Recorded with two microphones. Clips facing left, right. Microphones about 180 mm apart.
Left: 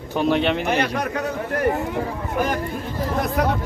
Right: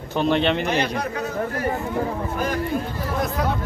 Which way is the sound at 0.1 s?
5° left (ahead or behind).